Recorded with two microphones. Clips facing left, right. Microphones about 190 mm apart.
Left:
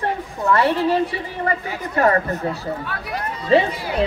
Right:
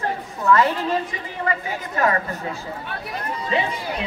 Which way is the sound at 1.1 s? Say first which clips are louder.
Left 3 dB; 35° left (ahead or behind).